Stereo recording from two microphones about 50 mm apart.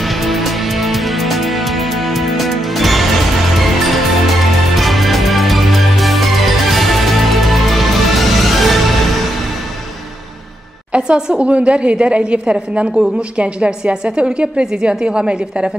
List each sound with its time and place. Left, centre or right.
0.0 s music: centre
10.9 s a sound: centre
11.4 s a woman's voice: right